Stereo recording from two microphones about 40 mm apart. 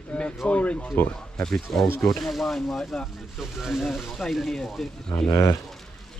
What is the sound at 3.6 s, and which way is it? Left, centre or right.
Speech, centre.